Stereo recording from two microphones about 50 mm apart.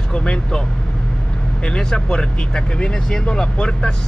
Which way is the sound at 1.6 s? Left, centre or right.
Centre.